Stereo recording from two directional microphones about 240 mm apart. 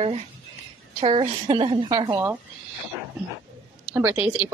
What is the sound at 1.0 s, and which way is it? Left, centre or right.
A woman's voice, right.